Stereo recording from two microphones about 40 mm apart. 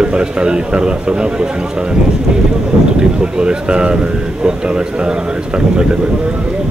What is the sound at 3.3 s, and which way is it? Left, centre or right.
Speech, right.